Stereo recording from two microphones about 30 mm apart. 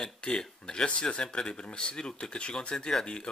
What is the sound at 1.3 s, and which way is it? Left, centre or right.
Speech, left.